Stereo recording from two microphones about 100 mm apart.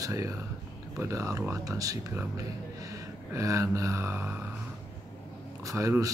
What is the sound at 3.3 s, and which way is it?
Speech, 35° right (ahead or behind).